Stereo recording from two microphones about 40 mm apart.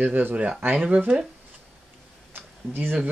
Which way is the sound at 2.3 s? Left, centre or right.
Right.